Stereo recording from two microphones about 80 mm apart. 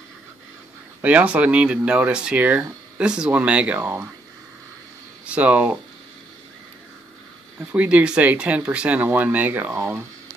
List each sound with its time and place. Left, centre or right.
1.0 s speech: centre
5.2 s speech: centre
7.7 s speech: centre; by 10.0 s right